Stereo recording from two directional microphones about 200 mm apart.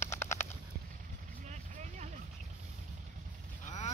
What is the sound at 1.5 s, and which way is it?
Vehicle, 35° right (ahead or behind).